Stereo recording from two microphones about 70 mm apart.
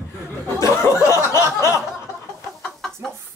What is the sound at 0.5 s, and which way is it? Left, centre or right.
Chuckle, left.